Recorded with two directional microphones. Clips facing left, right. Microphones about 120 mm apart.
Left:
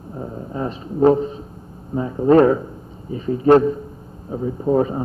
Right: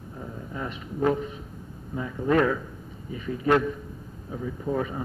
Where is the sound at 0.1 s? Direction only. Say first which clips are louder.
Left 8 dB; 35° left (ahead or behind).